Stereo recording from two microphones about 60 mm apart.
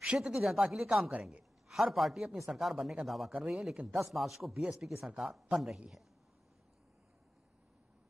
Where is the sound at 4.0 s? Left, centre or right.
Centre.